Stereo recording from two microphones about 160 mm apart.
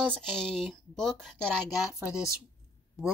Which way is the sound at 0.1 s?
5° left (ahead or behind).